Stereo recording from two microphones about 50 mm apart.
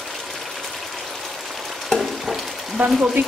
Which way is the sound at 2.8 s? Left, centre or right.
Right.